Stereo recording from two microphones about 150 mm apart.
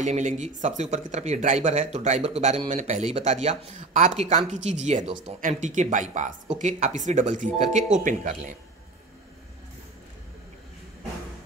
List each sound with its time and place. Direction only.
0.0 s speech: 55° right (ahead or behind)